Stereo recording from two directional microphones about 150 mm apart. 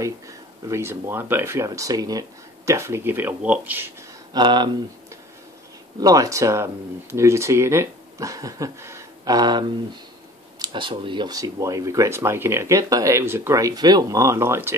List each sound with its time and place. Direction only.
0.0 s speech: 20° right (ahead or behind)
4.3 s speech: 30° right (ahead or behind)
5.9 s speech: 25° right (ahead or behind)